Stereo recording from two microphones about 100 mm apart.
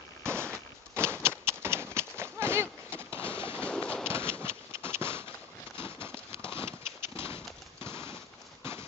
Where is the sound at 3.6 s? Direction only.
10° left (ahead or behind).